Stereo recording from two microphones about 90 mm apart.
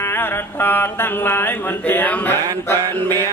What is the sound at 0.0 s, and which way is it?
Mantra, 25° left (ahead or behind).